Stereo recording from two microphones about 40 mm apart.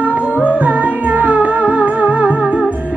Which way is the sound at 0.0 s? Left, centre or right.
Right.